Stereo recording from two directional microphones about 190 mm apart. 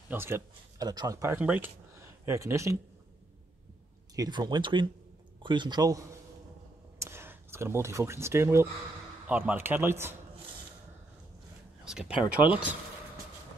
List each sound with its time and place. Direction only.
0.1 s speech: 10° right (ahead or behind)
4.1 s speech: 20° right (ahead or behind)
11.8 s speech: 5° right (ahead or behind)